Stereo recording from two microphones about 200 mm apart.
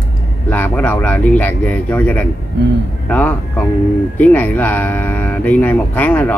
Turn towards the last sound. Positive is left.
turn(degrees=10)  # may be behind; listen again after turning